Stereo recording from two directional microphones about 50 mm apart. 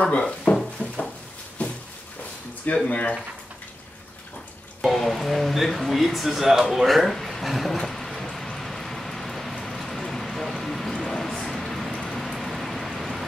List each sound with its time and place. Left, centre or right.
0.0 s speech: left
1.6 s a sound: left
2.9 s speech: left
4.8 s music: centre
10.9 s a sound: centre
11.4 s rain: centre